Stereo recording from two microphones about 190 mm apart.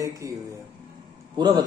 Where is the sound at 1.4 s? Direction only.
20° right (ahead or behind).